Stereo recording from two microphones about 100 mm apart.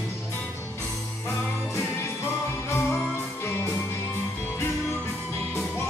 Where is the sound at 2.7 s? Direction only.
25° left (ahead or behind).